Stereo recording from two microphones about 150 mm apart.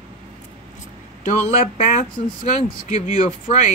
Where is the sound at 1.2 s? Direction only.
50° left (ahead or behind).